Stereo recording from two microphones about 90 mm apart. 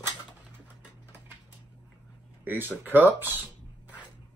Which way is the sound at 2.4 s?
20° right (ahead or behind).